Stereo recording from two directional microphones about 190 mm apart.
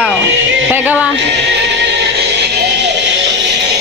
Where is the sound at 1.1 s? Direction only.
65° right (ahead or behind).